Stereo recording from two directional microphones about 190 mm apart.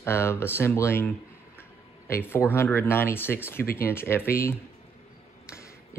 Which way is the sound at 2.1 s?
15° left (ahead or behind).